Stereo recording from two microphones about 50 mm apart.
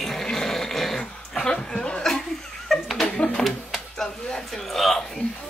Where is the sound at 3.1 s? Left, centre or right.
Centre.